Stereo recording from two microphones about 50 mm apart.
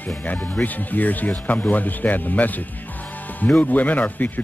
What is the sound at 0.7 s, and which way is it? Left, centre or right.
Speech, left.